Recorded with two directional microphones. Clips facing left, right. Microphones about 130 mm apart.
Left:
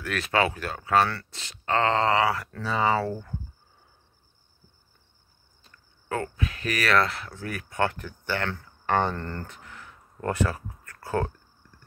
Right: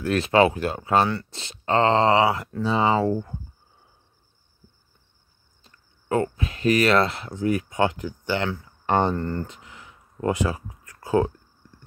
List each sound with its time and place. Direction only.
0.0 s speech: 30° right (ahead or behind)
5.6 s speech: 25° right (ahead or behind)